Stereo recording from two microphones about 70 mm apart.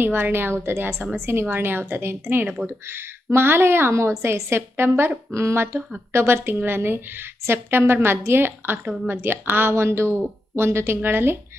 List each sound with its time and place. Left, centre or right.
0.0 s a woman's voice: right